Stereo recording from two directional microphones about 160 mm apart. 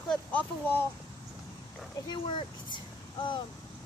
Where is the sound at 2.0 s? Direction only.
30° left (ahead or behind).